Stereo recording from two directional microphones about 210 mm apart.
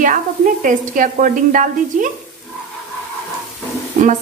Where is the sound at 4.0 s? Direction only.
35° right (ahead or behind).